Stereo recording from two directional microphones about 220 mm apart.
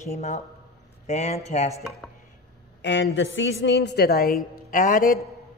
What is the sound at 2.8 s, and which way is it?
A woman's voice, 60° left (ahead or behind).